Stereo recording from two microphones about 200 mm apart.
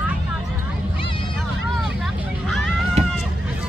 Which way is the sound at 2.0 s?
Centre (ahead or behind).